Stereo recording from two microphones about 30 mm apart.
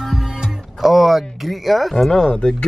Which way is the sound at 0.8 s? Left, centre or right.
Centre.